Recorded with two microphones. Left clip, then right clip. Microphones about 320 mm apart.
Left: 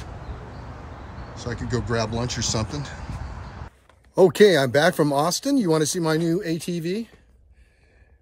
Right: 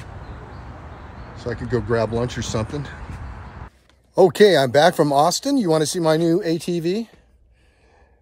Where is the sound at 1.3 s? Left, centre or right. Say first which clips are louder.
Right 5 dB; centre.